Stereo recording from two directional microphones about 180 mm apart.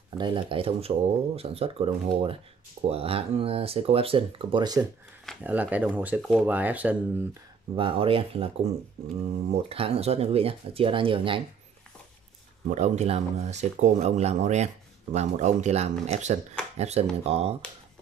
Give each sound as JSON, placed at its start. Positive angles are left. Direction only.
{"t": 0.2, "sound": "speech", "side_deg": -25}
{"t": 5.4, "sound": "speech", "side_deg": -10}
{"t": 7.7, "sound": "speech", "side_deg": -30}
{"t": 12.6, "sound": "speech", "side_deg": -40}